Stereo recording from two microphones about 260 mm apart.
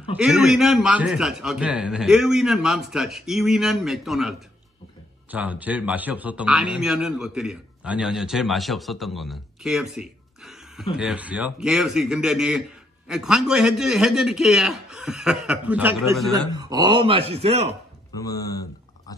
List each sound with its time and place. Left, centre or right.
0.2 s a man's voice: centre
16.5 s speech: centre
18.2 s speech: centre